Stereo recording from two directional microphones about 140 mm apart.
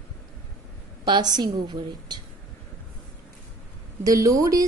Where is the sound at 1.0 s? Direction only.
30° right (ahead or behind).